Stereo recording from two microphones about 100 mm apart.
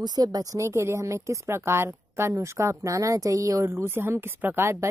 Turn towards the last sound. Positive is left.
turn(degrees=-20)  # may be behind; listen again after turning